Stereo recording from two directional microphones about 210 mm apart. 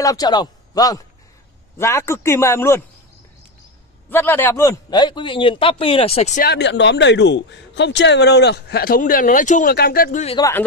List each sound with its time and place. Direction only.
0.0 s a man's voice: 15° left (ahead or behind)
4.1 s a man's voice: 10° left (ahead or behind); by 6.4 s 30° left (ahead or behind)
6.4 s speech: 55° left (ahead or behind)